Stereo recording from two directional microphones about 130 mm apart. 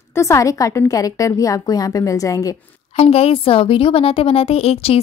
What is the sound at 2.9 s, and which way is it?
A woman's voice, 50° left (ahead or behind).